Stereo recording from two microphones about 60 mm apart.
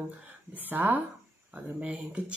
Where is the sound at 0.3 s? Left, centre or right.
Right.